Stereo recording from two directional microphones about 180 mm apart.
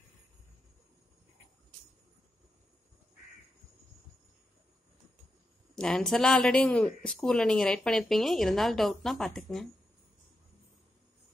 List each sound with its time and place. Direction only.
5.8 s speech: 5° left (ahead or behind)